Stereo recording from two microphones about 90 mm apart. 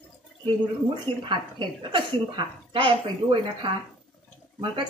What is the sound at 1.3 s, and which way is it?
A woman's voice, 65° right (ahead or behind).